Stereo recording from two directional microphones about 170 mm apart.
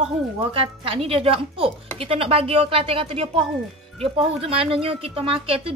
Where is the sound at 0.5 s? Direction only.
35° right (ahead or behind).